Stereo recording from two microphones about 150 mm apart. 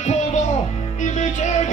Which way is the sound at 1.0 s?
55° left (ahead or behind).